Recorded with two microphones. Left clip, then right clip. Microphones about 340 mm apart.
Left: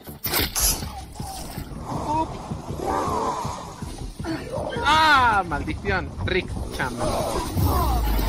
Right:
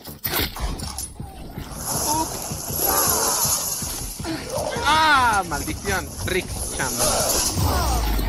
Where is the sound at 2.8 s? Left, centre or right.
Right.